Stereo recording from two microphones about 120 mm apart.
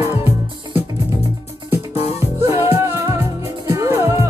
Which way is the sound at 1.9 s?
60° left (ahead or behind).